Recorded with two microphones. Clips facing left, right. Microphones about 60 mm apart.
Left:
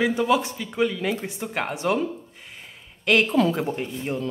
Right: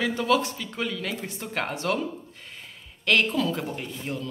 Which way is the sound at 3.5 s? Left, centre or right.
Left.